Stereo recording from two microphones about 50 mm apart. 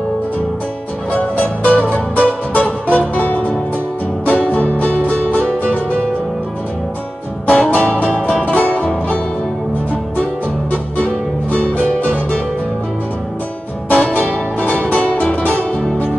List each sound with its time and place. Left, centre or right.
1.6 s music: left
7.4 s music: left
8.1 s music: centre
8.5 s music: left
13.8 s music: left